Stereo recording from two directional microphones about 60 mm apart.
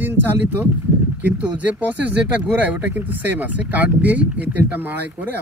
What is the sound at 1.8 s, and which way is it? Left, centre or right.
Speech, right.